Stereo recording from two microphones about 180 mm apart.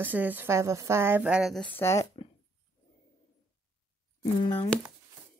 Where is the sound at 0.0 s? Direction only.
10° right (ahead or behind); by 2.0 s 15° left (ahead or behind).